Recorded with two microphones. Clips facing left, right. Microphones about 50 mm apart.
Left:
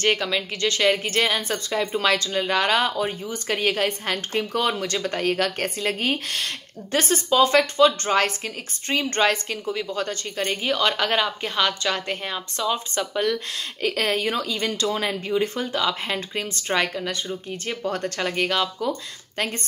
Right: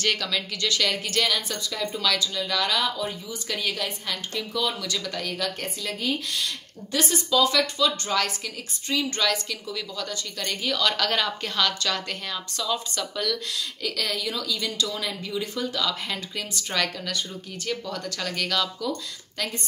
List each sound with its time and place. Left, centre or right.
0.0 s a woman's voice: left
13.8 s a woman's voice: left
17.8 s speech: left
18.2 s speech: left
19.3 s speech: left